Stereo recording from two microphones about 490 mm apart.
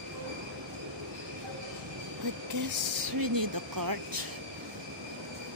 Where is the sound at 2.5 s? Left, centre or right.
Right.